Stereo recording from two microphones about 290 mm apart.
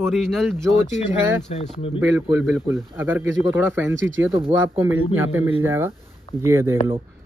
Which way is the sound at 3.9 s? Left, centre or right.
Right.